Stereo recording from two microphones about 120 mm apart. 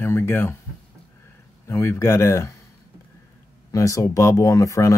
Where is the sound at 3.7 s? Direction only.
25° left (ahead or behind).